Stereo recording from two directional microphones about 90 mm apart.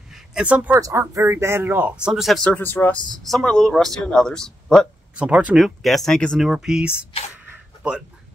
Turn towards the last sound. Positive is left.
turn(degrees=-10)  # may be behind; listen again after turning